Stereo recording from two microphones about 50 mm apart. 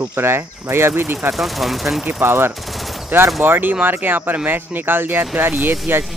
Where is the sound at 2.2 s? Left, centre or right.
Right.